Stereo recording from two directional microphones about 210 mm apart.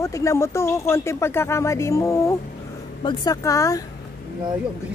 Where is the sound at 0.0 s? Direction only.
15° left (ahead or behind).